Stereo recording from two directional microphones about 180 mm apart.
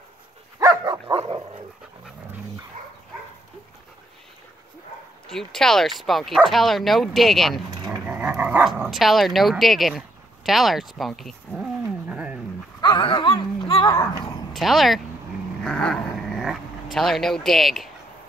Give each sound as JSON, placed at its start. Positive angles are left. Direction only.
{"t": 0.6, "sound": "dog", "side_deg": -20}
{"t": 5.3, "sound": "speech", "side_deg": 0}
{"t": 11.8, "sound": "a sound", "side_deg": -10}
{"t": 12.8, "sound": "a sound", "side_deg": 25}
{"t": 14.5, "sound": "speech", "side_deg": 0}
{"t": 15.6, "sound": "dog", "side_deg": 5}